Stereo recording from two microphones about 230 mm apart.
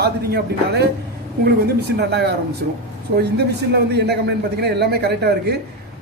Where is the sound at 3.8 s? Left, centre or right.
Right.